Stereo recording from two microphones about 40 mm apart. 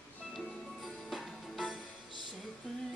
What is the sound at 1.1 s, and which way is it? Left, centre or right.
Music, centre.